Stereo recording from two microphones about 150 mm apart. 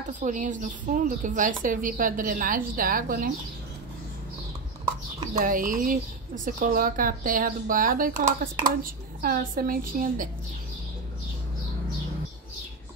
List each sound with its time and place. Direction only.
0.2 s a woman's voice: 55° right (ahead or behind)
5.4 s speech: 65° right (ahead or behind)